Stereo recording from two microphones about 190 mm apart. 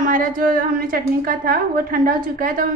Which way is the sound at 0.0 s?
45° right (ahead or behind).